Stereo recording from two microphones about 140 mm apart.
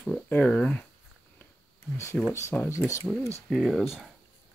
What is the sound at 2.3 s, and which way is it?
Speech, 20° left (ahead or behind).